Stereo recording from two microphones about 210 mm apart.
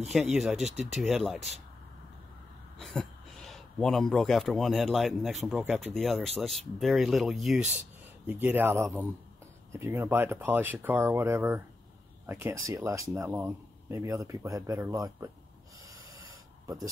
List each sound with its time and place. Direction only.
0.3 s speech: 5° right (ahead or behind)
2.8 s speech: centre (ahead or behind); by 15.3 s 15° right (ahead or behind)
16.6 s speech: 15° right (ahead or behind)